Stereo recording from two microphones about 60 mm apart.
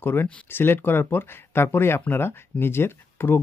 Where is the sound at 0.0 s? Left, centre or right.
Left.